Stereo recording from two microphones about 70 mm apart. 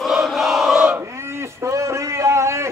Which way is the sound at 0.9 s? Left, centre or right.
Right.